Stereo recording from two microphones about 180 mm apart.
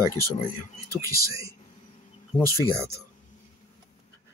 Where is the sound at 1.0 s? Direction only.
20° right (ahead or behind).